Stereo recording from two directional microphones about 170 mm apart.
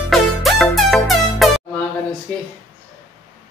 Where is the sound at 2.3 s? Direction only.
5° left (ahead or behind).